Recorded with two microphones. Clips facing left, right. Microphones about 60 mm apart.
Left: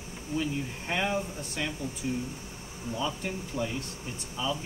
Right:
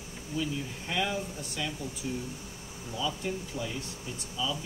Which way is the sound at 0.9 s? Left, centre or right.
Left.